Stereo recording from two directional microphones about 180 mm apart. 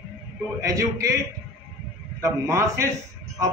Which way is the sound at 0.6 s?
20° right (ahead or behind).